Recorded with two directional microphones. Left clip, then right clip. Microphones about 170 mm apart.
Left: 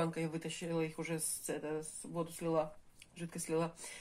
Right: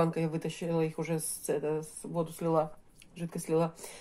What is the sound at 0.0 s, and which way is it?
A woman's voice, 40° right (ahead or behind).